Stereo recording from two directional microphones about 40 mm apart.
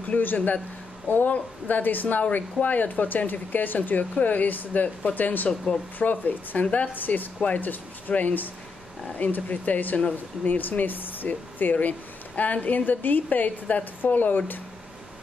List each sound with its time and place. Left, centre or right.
0.2 s a woman's voice: left
12.4 s a woman's voice: left
14.1 s a woman's voice: left